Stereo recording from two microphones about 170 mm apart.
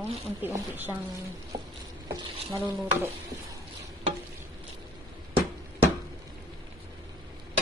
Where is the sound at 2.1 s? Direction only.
15° right (ahead or behind).